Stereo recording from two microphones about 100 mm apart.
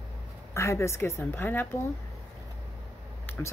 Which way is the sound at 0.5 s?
30° left (ahead or behind).